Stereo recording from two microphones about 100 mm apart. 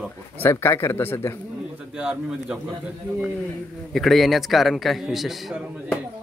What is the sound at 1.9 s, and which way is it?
Speech, 10° right (ahead or behind).